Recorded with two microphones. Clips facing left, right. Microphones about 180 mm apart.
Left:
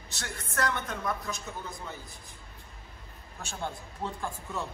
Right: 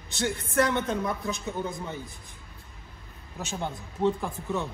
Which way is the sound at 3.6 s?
Centre (ahead or behind).